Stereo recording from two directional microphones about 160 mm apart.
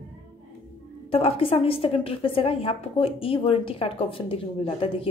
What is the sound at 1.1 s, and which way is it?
A woman's voice, 35° left (ahead or behind).